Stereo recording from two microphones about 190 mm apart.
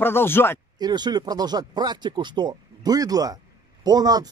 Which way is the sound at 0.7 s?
20° right (ahead or behind).